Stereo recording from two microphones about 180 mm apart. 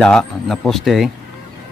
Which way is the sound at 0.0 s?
5° left (ahead or behind).